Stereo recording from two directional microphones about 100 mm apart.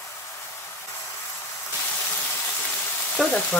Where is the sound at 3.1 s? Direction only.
Centre (ahead or behind).